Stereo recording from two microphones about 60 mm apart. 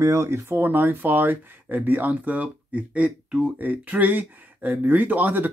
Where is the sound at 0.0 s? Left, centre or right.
Right.